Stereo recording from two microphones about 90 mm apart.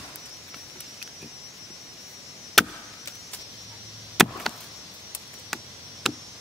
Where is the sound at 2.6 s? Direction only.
Centre (ahead or behind).